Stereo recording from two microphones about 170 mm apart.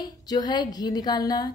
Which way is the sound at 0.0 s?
25° left (ahead or behind).